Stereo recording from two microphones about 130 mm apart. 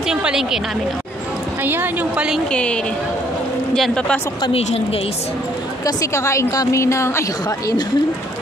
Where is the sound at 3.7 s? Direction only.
5° left (ahead or behind).